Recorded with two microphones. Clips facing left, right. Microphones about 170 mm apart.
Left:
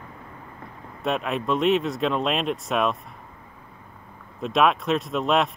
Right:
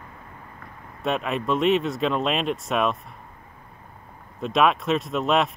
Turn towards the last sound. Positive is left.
turn(degrees=0)  # may be behind; listen again after turning